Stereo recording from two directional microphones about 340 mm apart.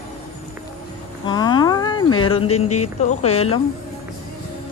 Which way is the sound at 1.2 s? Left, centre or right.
Centre.